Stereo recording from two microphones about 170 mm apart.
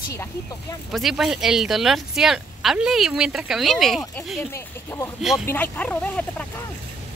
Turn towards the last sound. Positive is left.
turn(degrees=10)  # may be behind; listen again after turning